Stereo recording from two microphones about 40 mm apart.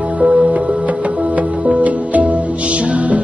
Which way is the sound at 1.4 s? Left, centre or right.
Right.